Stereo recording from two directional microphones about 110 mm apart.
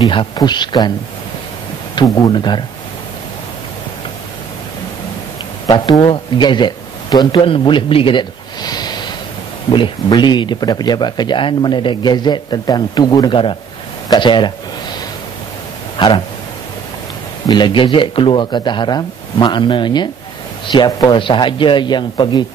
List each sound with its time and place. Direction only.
0.4 s a man's voice: 40° left (ahead or behind)
2.0 s a man's voice: 30° left (ahead or behind)
2.3 s speech: 45° left (ahead or behind)
5.9 s a man's voice: 55° left (ahead or behind)
17.5 s speech: 45° left (ahead or behind)